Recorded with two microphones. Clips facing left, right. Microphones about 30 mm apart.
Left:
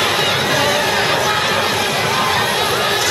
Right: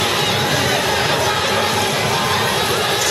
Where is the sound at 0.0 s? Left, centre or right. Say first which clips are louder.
Left 2 dB; centre.